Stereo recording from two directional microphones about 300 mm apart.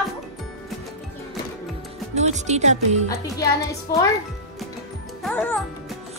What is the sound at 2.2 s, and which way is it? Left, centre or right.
Speech, right.